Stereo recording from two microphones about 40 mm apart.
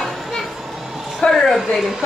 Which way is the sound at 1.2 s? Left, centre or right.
Left.